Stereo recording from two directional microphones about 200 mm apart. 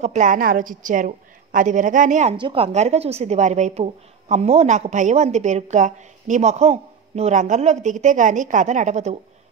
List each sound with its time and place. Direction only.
0.0 s a woman's voice: 35° right (ahead or behind)
2.3 s a woman's voice: 25° right (ahead or behind)